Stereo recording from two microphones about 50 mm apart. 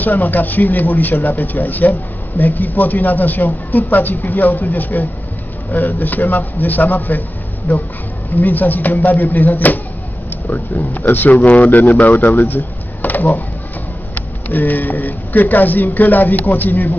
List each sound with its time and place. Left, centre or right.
0.0 s speech: left